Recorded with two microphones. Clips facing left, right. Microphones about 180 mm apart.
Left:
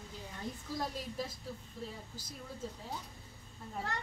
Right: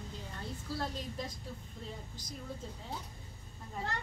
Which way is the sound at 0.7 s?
10° left (ahead or behind).